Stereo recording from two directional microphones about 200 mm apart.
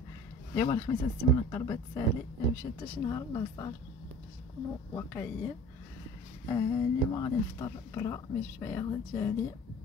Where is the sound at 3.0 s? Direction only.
20° left (ahead or behind).